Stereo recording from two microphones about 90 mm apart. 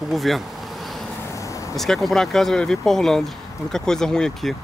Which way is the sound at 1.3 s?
35° left (ahead or behind).